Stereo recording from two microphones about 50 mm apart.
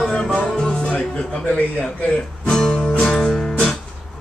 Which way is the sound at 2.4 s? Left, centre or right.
Centre.